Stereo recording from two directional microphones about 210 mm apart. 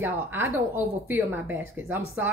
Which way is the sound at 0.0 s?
10° right (ahead or behind).